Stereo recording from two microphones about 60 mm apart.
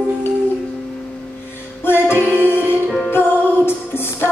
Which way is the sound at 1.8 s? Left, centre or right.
Left.